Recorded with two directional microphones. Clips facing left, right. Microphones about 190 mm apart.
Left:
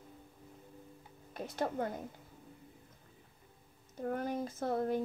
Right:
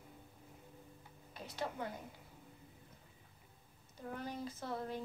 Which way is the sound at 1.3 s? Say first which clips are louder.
Left 7 dB; 50° left (ahead or behind).